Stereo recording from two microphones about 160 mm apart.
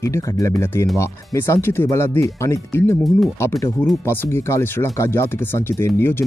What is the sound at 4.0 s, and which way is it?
Speech, 15° left (ahead or behind).